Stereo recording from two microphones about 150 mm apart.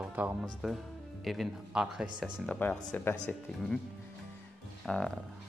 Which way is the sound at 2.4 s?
10° left (ahead or behind).